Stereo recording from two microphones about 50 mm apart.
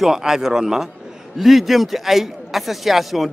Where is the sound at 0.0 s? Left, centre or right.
Centre.